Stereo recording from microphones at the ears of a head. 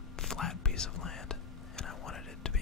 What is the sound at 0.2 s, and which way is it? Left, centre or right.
Whispering, left.